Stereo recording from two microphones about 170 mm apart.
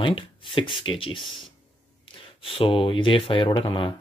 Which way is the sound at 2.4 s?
35° left (ahead or behind).